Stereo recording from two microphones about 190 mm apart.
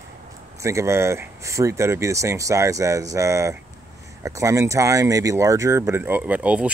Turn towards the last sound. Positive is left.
turn(degrees=-5)  # may be behind; listen again after turning